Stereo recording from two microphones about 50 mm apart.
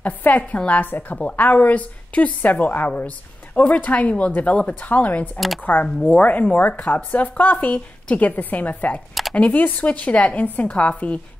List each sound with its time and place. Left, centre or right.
0.0 s a woman's voice: left